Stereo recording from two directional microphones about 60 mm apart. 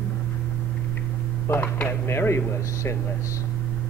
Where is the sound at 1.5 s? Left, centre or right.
Left.